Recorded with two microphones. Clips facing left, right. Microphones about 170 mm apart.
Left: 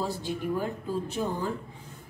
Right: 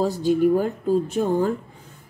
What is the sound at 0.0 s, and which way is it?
Speech, 45° right (ahead or behind).